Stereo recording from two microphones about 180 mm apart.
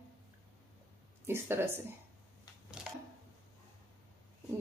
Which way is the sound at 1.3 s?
15° right (ahead or behind).